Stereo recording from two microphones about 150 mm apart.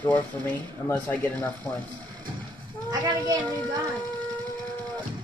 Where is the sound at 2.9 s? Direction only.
30° right (ahead or behind).